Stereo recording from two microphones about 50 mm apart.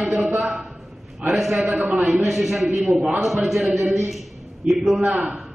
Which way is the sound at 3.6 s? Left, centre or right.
Right.